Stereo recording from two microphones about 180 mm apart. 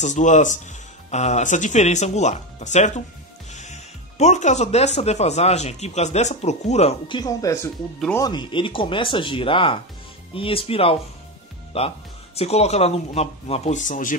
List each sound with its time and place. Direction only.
0.0 s speech: 40° left (ahead or behind)
7.2 s speech: 20° left (ahead or behind); by 14.1 s 45° left (ahead or behind)